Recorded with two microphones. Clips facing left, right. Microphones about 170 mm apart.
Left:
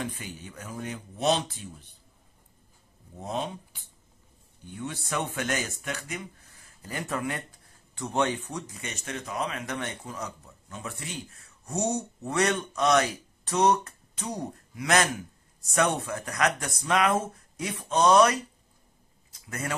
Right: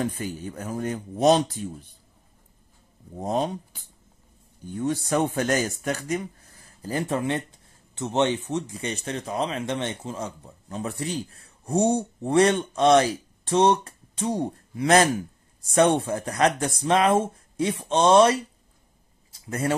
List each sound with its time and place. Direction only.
0.0 s speech: 45° right (ahead or behind)
3.2 s speech: 40° right (ahead or behind)
4.6 s speech: 40° right (ahead or behind)
19.3 s a sound: 30° right (ahead or behind)